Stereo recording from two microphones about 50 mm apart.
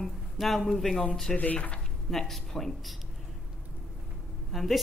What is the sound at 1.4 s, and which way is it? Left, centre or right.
Speech, left.